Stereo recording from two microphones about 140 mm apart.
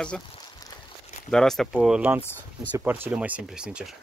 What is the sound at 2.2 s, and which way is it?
Speech, 15° left (ahead or behind).